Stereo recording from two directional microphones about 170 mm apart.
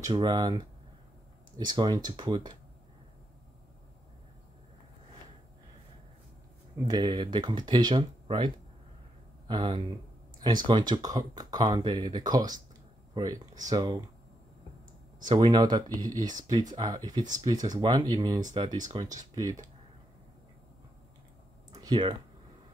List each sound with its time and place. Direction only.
0.0 s speech: 25° right (ahead or behind)
6.9 s speech: 25° right (ahead or behind)
9.5 s speech: 25° right (ahead or behind)
15.2 s speech: 25° right (ahead or behind)
17.2 s speech: 45° right (ahead or behind)
17.6 s speech: 25° right (ahead or behind)
21.7 s a sound: 25° right (ahead or behind)